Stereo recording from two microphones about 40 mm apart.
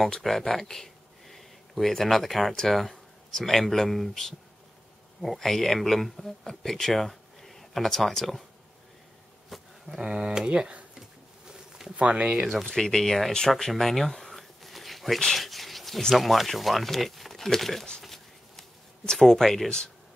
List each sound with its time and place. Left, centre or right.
0.2 s speech: centre
6.4 s speech: centre
9.5 s a sound: centre
10.0 s speech: centre
10.5 s speech: right
12.0 s speech: right
12.6 s speech: centre
13.6 s a sound: centre
16.2 s speech: centre
18.0 s a sound: centre
19.1 s speech: centre